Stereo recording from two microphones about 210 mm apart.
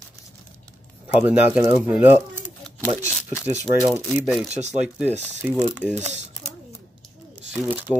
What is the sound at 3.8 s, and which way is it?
Speech, 10° left (ahead or behind).